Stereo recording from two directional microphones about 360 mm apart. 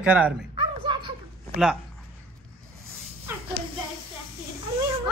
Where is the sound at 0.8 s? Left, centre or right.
Centre.